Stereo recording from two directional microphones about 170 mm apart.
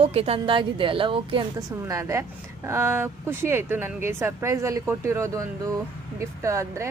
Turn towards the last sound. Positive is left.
turn(degrees=-15)  # may be behind; listen again after turning